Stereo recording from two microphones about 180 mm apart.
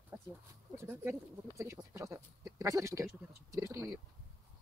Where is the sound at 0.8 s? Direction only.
10° right (ahead or behind).